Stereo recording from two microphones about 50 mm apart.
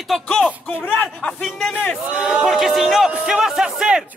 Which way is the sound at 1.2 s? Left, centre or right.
Centre.